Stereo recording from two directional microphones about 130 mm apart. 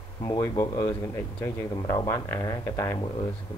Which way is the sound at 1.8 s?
30° left (ahead or behind).